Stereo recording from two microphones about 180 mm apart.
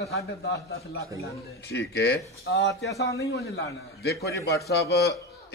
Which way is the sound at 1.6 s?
70° left (ahead or behind).